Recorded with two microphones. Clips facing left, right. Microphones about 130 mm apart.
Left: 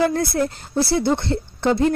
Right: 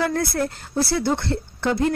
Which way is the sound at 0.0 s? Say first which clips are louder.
Left 3 dB; 20° left (ahead or behind).